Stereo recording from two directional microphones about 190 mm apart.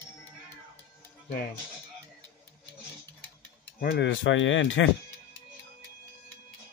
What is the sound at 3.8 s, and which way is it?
Speech, 55° left (ahead or behind).